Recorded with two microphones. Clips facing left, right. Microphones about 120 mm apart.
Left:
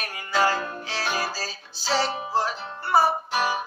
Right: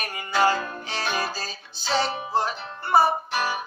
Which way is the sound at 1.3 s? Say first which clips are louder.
Even; 5° left (ahead or behind).